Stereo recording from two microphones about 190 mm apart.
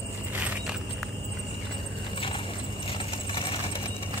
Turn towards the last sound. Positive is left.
turn(degrees=25)  # may be behind; listen again after turning